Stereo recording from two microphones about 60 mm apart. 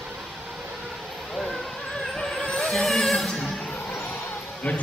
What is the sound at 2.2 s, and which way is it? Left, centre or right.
Music, centre.